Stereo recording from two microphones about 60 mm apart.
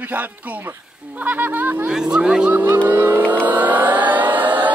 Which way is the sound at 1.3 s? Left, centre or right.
Right.